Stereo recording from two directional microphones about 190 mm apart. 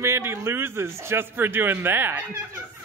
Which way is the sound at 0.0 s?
15° right (ahead or behind).